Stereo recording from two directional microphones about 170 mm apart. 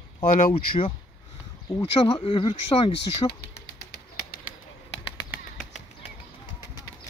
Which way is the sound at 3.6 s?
70° left (ahead or behind).